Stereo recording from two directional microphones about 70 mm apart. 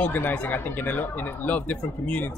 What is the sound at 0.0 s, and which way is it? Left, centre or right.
A woman's voice, left.